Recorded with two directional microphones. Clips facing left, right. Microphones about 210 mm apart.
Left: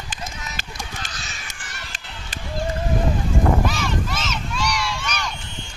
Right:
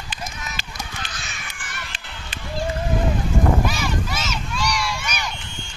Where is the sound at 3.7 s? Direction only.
5° right (ahead or behind).